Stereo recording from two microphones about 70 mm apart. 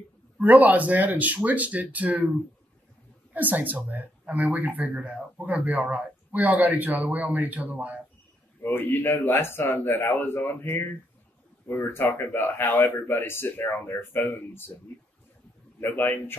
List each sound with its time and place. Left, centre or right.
0.4 s a man's voice: right
3.3 s a man's voice: right
8.6 s a man's voice: left
15.8 s a man's voice: left